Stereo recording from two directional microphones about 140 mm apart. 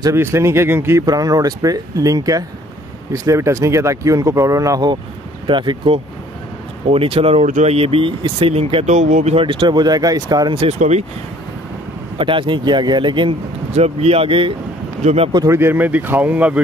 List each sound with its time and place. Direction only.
0.0 s speech: 20° right (ahead or behind); by 7.4 s 40° right (ahead or behind)
7.4 s speech: 55° right (ahead or behind); by 10.8 s 40° right (ahead or behind)
10.8 s speech: 55° right (ahead or behind)
12.2 s speech: 35° right (ahead or behind)
13.7 s speech: 50° right (ahead or behind)
15.3 s speech: 20° right (ahead or behind)